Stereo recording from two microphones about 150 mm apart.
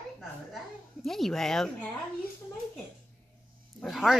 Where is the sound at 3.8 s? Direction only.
Centre (ahead or behind).